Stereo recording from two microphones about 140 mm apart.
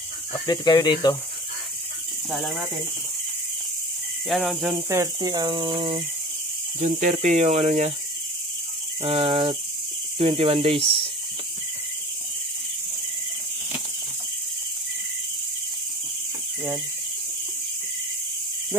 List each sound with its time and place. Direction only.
0.3 s speech: 30° left (ahead or behind)
2.3 s cricket: centre (ahead or behind)
4.3 s cricket: centre (ahead or behind)
5.0 s cricket: 30° right (ahead or behind)
6.8 s speech: 60° right (ahead or behind)
9.0 s cricket: 45° right (ahead or behind)